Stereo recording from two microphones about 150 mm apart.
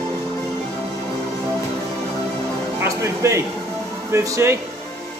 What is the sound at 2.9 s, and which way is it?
Speech, 20° right (ahead or behind).